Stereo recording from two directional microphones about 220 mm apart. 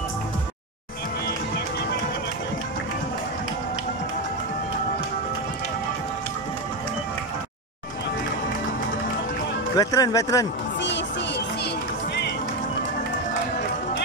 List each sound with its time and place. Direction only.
9.8 s speech: 15° left (ahead or behind)
10.8 s music: 50° left (ahead or behind)